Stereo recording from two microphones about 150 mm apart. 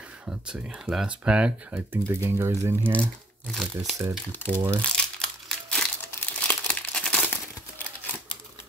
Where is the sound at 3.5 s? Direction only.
Centre (ahead or behind).